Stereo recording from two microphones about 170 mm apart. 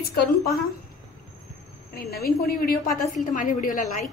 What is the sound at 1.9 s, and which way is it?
Speech, 65° left (ahead or behind).